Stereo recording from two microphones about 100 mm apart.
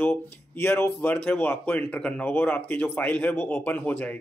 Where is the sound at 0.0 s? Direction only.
20° left (ahead or behind).